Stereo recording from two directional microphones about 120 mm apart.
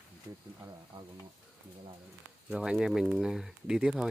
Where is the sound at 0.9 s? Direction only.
35° right (ahead or behind).